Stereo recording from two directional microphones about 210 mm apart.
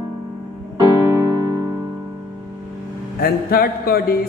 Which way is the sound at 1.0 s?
15° right (ahead or behind).